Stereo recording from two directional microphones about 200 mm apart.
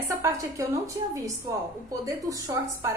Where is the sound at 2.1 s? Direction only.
15° right (ahead or behind).